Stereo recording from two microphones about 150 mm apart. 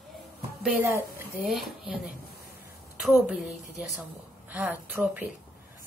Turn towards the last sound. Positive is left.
turn(degrees=-10)  # may be behind; listen again after turning